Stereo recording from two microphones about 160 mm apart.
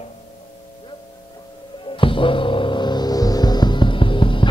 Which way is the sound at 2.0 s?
35° left (ahead or behind).